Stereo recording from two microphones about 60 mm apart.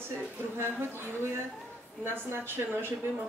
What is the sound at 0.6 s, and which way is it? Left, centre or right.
Speech, right.